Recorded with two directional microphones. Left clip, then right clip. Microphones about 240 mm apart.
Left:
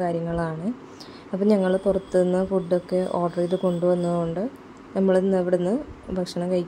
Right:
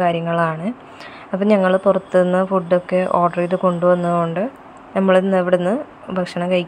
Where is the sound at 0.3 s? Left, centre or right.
Centre.